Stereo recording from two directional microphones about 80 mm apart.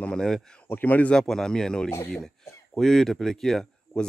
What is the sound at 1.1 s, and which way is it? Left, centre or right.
Speech, centre.